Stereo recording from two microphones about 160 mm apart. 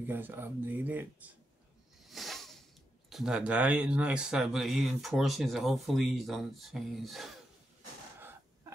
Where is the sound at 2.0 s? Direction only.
Centre (ahead or behind).